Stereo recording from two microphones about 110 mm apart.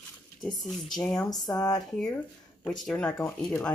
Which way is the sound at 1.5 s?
35° left (ahead or behind).